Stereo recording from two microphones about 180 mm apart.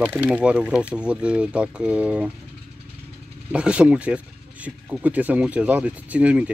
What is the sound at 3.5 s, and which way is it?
Speech, 5° right (ahead or behind).